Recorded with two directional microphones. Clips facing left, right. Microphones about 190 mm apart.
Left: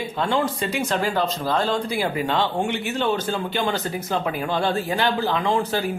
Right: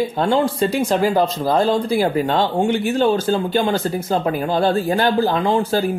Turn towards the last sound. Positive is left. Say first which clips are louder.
# right 5 dB
turn(degrees=-40)  # may be behind; listen again after turning